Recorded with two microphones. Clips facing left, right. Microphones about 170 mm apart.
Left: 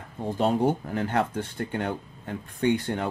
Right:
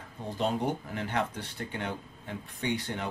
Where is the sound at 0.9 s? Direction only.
50° left (ahead or behind).